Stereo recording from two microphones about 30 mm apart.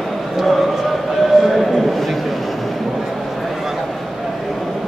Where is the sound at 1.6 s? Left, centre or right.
Centre.